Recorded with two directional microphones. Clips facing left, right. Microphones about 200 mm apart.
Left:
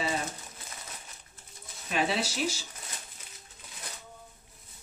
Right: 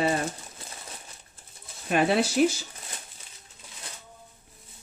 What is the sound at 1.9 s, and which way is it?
Speech, 55° right (ahead or behind).